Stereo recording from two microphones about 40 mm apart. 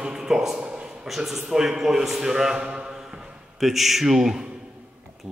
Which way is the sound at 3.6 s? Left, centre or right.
Centre.